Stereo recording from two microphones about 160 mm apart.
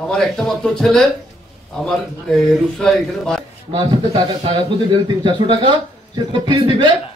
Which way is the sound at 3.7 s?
30° right (ahead or behind).